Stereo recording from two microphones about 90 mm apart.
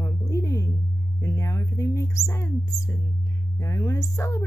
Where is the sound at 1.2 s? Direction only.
40° left (ahead or behind).